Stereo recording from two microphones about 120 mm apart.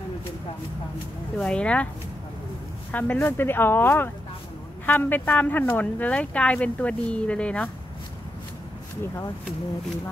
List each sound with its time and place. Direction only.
1.4 s speech: 10° left (ahead or behind)
2.9 s speech: 15° left (ahead or behind)
9.0 s speech: 25° left (ahead or behind)